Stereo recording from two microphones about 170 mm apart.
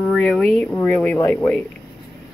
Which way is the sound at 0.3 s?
5° left (ahead or behind).